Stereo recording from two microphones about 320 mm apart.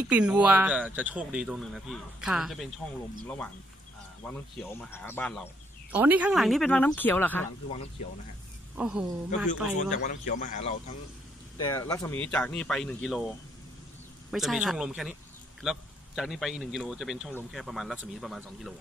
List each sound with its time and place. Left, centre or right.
0.1 s speech: centre
4.3 s speech: centre
8.7 s speech: centre
9.8 s speech: left
11.6 s speech: centre
14.3 s speech: centre